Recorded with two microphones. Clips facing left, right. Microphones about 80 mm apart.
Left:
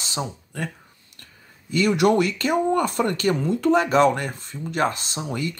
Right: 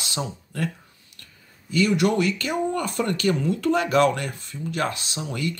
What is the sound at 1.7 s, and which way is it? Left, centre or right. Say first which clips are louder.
Speech: left 2 dB; left.